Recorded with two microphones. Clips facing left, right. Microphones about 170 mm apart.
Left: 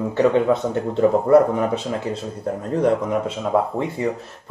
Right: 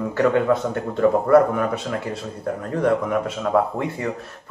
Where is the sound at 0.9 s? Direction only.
20° left (ahead or behind).